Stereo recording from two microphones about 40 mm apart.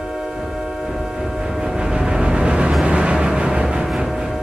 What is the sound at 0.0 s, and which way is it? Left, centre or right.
Music, centre.